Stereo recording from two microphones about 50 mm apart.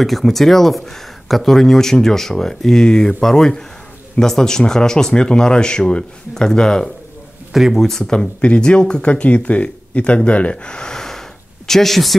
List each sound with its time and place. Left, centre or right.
0.0 s speech: centre
7.5 s speech: centre
8.1 s speech: centre